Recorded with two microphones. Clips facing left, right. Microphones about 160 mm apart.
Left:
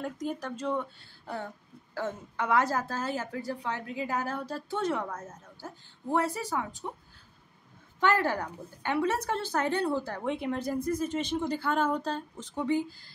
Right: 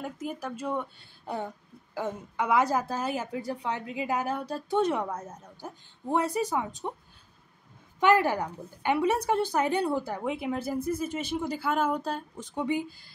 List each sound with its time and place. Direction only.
0.0 s a woman's voice: 5° right (ahead or behind)
8.0 s a woman's voice: 10° right (ahead or behind)